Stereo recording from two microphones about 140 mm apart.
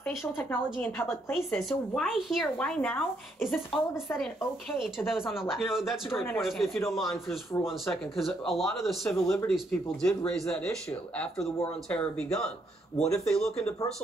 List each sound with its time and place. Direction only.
0.2 s a woman's voice: 15° left (ahead or behind); by 2.7 s centre (ahead or behind)
2.8 s speech: 10° left (ahead or behind)
3.4 s a woman's voice: centre (ahead or behind)
11.9 s a woman's voice: 5° left (ahead or behind)
12.9 s speech: 50° left (ahead or behind)
13.3 s a woman's voice: 5° left (ahead or behind)